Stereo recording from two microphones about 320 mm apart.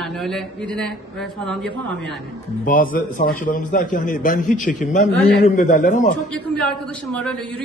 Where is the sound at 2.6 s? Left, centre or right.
Left.